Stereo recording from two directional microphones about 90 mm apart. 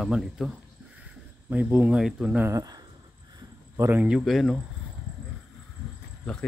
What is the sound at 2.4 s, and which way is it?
Speech, 40° right (ahead or behind).